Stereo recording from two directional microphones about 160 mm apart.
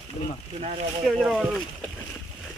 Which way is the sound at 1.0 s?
5° right (ahead or behind).